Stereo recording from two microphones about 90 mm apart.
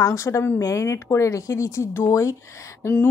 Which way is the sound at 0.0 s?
35° left (ahead or behind).